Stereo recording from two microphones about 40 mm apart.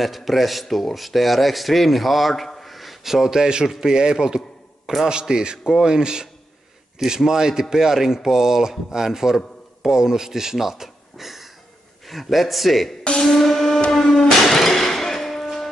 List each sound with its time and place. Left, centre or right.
0.0 s a man's voice: centre
7.2 s speech: centre
13.2 s music: centre
13.7 s music: left
14.1 s music: centre